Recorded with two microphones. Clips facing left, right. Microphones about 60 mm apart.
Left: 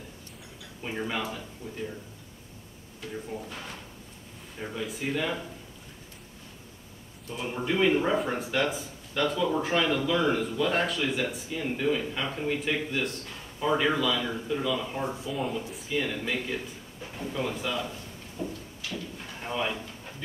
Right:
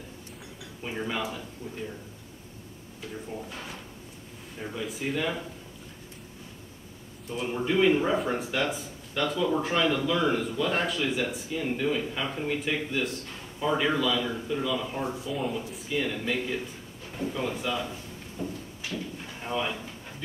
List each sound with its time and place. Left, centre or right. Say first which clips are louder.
0.8 s speech: even; centre
3.3 s speech: even; centre
7.2 s speech: right 2 dB; centre
18.8 s clip-clop: right 1 dB; right
19.4 s speech: even; centre